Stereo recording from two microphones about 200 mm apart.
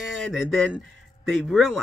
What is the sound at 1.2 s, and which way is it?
Speech, centre (ahead or behind).